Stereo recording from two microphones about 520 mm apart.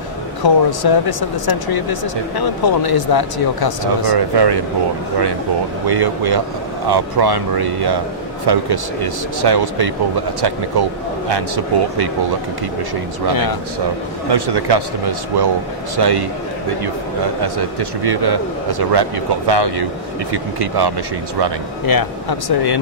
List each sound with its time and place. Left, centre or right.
0.4 s speech: left
5.9 s a man's voice: right
14.3 s a man's voice: right
21.9 s speech: left